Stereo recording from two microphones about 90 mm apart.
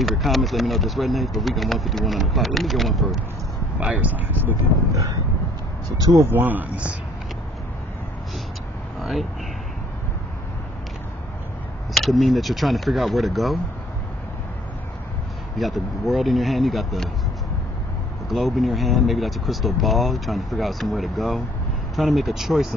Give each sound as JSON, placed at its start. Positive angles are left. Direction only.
{"t": 0.0, "sound": "speech", "side_deg": 0}
{"t": 3.8, "sound": "speech", "side_deg": -15}
{"t": 5.9, "sound": "speech", "side_deg": -45}
{"t": 6.2, "sound": "speech", "side_deg": -20}
{"t": 9.0, "sound": "speech", "side_deg": 0}
{"t": 11.9, "sound": "speech", "side_deg": 0}
{"t": 15.5, "sound": "speech", "side_deg": 0}
{"t": 18.3, "sound": "speech", "side_deg": 0}